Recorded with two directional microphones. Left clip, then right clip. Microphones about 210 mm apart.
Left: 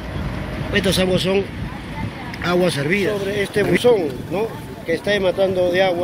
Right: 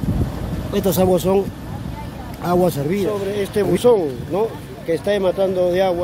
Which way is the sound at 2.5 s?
15° right (ahead or behind).